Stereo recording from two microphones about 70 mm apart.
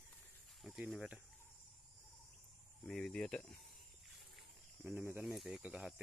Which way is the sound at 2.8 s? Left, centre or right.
Centre.